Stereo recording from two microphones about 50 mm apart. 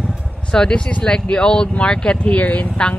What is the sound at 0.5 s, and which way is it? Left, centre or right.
Speech, centre.